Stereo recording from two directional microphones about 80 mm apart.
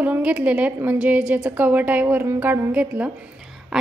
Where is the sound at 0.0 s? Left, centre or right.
Centre.